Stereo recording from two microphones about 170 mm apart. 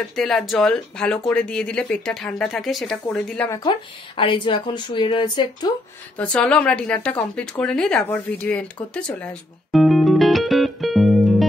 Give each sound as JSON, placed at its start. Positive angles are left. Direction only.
{"t": 0.1, "sound": "speech", "side_deg": 0}
{"t": 3.4, "sound": "speech", "side_deg": 20}
{"t": 6.1, "sound": "a woman's voice", "side_deg": 5}
{"t": 8.9, "sound": "music", "side_deg": 5}